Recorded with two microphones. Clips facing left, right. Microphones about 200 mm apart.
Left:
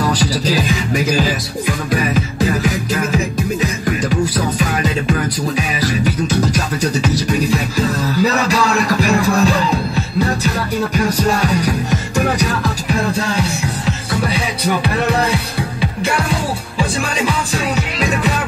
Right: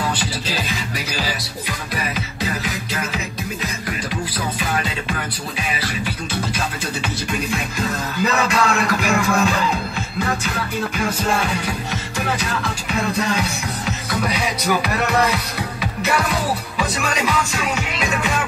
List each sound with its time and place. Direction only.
0.9 s music: 45° left (ahead or behind)
2.6 s music: 45° left (ahead or behind)
6.5 s music: 40° left (ahead or behind)
14.8 s speech: 30° left (ahead or behind)
16.7 s music: 30° left (ahead or behind)